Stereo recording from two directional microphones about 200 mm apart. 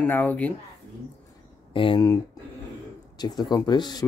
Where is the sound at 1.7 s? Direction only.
25° left (ahead or behind).